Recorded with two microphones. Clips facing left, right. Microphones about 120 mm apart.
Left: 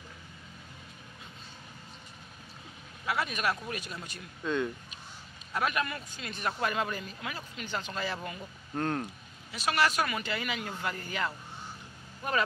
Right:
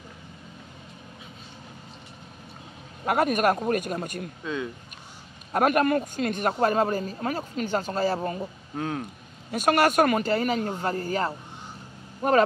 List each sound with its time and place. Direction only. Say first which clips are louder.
3.1 s speech: right 9 dB; 50° right (ahead or behind)
5.5 s speech: right 10 dB; 45° right (ahead or behind)
8.7 s speech: right 1 dB; 5° right (ahead or behind)
9.5 s speech: right 7 dB; 50° right (ahead or behind)